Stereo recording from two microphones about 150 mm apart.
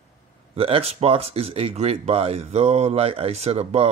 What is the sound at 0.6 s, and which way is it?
Speech, 40° right (ahead or behind).